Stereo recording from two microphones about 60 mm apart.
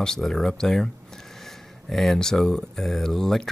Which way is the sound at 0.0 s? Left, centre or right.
Centre.